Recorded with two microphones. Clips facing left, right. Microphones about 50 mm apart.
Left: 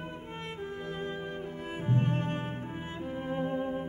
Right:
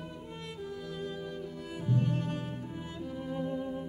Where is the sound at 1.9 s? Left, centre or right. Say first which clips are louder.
Left 1 dB; left.